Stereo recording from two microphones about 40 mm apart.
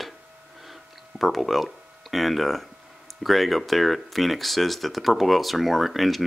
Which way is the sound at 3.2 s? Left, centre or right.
Centre.